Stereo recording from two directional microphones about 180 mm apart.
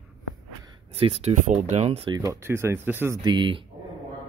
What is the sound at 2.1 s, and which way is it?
Speech, 20° right (ahead or behind).